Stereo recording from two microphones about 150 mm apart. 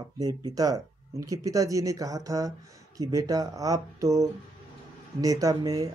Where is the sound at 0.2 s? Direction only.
25° right (ahead or behind).